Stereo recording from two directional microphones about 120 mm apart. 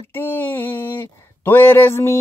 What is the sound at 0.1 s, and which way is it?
Mantra, 15° left (ahead or behind).